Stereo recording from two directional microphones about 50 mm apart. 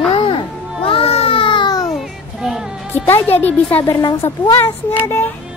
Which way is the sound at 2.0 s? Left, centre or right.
Centre.